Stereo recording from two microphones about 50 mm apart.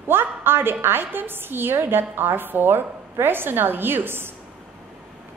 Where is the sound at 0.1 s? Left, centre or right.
Right.